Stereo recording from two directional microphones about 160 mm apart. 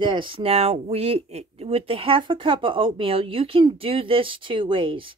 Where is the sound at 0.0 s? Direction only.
30° right (ahead or behind).